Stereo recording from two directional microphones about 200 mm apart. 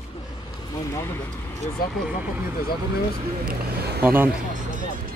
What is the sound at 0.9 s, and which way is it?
Vehicle, 10° left (ahead or behind).